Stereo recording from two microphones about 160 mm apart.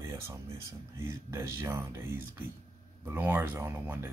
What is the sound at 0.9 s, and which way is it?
Speech, 15° right (ahead or behind).